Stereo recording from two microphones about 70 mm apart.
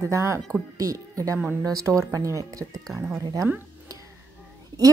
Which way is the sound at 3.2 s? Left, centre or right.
Right.